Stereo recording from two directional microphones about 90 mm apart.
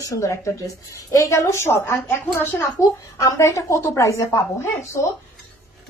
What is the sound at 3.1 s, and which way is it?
A woman's voice, 35° left (ahead or behind).